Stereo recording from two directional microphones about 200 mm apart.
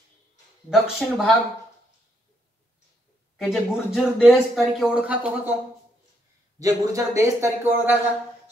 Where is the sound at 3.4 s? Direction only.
Centre (ahead or behind).